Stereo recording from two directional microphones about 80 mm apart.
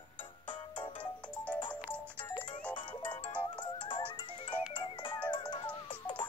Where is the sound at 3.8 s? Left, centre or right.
Left.